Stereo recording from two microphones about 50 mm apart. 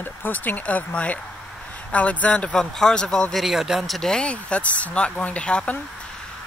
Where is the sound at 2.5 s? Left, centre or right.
Centre.